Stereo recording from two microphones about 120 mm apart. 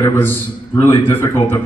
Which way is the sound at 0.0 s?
15° left (ahead or behind).